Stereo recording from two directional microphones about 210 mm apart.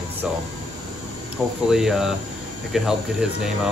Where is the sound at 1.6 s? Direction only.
Centre (ahead or behind).